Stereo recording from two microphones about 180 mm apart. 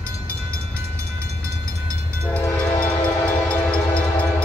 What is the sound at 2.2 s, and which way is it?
Train, 5° left (ahead or behind).